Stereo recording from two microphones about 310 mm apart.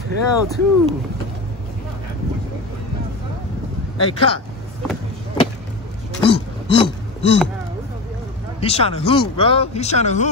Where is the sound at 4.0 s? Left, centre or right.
Centre.